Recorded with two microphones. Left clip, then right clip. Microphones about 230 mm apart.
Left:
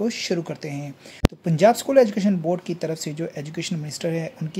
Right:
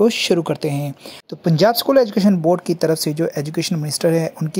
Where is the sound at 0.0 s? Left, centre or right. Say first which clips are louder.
Right 10 dB; right.